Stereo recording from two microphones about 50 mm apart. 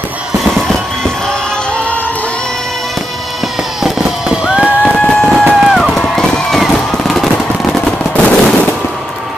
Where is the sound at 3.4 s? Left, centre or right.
Centre.